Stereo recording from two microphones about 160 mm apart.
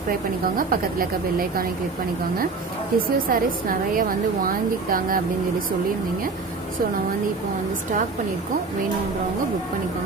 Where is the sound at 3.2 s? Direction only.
60° right (ahead or behind).